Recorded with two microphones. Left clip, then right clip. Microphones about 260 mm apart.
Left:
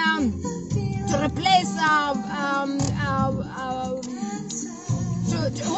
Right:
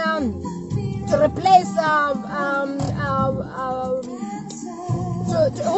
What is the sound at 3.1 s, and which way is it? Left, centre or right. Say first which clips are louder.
Child singing: right 5 dB; centre.